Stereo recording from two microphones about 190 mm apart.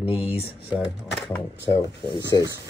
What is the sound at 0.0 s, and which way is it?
Speech, 5° right (ahead or behind).